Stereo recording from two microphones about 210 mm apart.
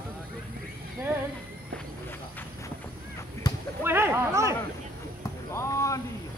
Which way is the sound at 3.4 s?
20° left (ahead or behind).